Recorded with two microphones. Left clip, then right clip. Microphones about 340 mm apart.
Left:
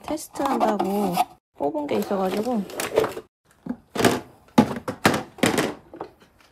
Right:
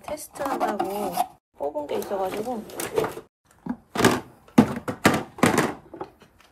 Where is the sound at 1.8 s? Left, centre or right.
Left.